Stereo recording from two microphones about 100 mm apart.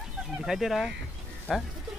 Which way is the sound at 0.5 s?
5° right (ahead or behind).